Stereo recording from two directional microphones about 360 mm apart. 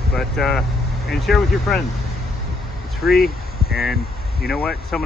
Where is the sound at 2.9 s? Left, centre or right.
Centre.